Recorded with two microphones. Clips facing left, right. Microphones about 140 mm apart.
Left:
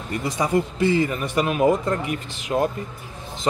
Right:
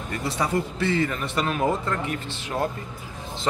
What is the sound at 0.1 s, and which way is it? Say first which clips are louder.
Speech: left 4 dB; 15° left (ahead or behind).